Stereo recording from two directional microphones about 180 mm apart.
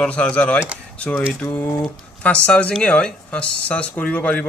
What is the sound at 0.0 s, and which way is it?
Speech, 5° left (ahead or behind).